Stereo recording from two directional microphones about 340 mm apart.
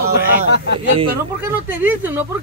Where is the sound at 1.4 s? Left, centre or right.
Centre.